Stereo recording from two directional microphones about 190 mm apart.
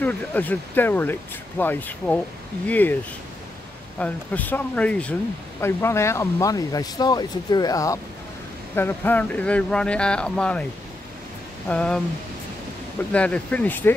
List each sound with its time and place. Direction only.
0.0 s speech: 10° left (ahead or behind)
4.0 s speech: 10° left (ahead or behind)
11.7 s speech: 5° left (ahead or behind)
13.1 s speech: 5° left (ahead or behind)